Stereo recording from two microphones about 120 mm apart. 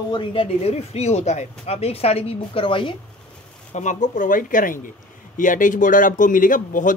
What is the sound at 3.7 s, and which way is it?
Speech, 90° left.